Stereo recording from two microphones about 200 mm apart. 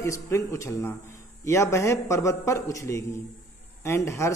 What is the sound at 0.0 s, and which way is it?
Speech, 15° left (ahead or behind).